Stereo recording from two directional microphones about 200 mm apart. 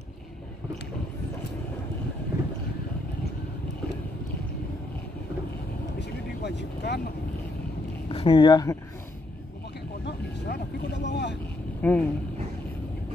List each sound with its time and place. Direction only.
5.9 s vehicle: 60° left (ahead or behind)
8.1 s speech: 30° left (ahead or behind)
10.0 s vehicle: 55° left (ahead or behind)
11.8 s speech: 10° left (ahead or behind)